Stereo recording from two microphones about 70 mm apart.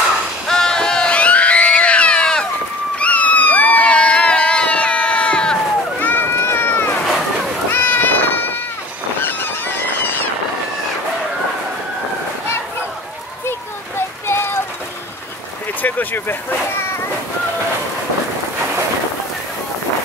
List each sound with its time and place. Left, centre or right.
0.5 s cat: centre
3.0 s crowd: centre
5.9 s a sound: left
7.7 s cat: left
13.5 s a sound: left
15.8 s vehicle: left